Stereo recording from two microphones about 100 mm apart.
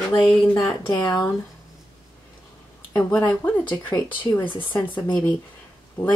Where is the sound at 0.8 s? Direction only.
35° left (ahead or behind).